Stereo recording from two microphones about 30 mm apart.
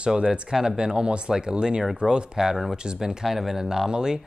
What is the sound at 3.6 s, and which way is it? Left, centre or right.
Speech, centre.